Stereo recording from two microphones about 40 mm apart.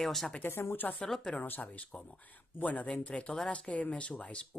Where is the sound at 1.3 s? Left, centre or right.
Left.